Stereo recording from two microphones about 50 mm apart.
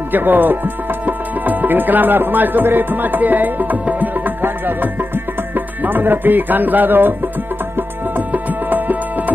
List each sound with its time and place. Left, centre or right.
0.1 s music: right
5.9 s music: right
8.3 s tabla: right